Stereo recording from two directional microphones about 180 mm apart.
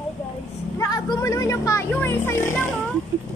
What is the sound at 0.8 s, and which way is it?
Speech, 20° left (ahead or behind).